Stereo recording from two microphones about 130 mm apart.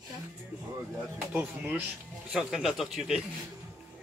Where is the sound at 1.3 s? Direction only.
15° right (ahead or behind).